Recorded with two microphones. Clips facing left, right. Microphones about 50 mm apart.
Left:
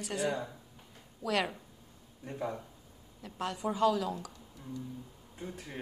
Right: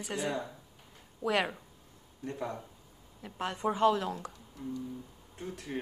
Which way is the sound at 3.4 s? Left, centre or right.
Right.